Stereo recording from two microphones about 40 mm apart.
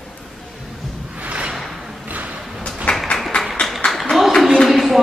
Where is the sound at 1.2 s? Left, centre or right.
Right.